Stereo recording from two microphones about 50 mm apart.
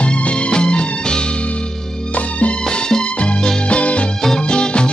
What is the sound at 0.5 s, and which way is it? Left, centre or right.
Music of bollywood, centre.